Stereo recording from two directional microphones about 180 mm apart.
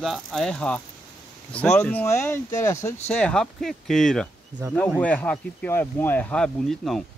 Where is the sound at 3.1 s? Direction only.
5° left (ahead or behind).